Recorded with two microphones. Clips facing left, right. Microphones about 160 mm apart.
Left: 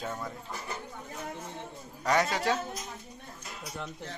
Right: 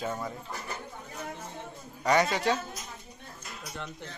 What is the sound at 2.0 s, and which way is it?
Speech, centre (ahead or behind).